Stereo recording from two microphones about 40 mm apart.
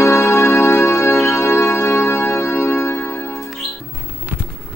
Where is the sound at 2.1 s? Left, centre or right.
Left.